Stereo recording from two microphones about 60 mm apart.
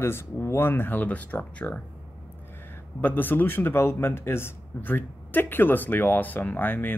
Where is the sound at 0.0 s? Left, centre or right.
Left.